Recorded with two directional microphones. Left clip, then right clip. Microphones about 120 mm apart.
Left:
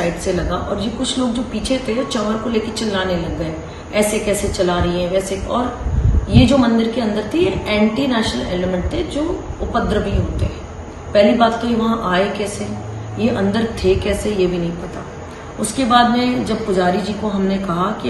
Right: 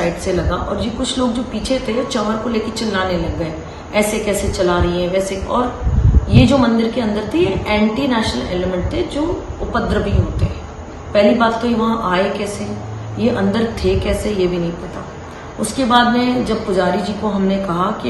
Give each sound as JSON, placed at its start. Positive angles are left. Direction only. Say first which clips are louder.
{"t": 0.0, "sound": "a woman's voice", "louder": "right 1 dB", "side_deg": -20}
{"t": 9.7, "sound": "a man's voice", "louder": "even", "side_deg": -15}
{"t": 11.1, "sound": "a woman's voice", "louder": "even", "side_deg": -20}
{"t": 13.2, "sound": "a woman's voice", "louder": "right 1 dB", "side_deg": -15}
{"t": 15.7, "sound": "a woman's voice", "louder": "even", "side_deg": -20}